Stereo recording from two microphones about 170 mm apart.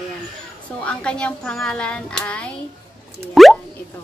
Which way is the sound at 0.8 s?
5° left (ahead or behind).